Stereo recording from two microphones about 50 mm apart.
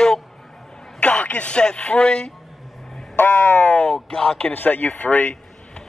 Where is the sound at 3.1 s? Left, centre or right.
Left.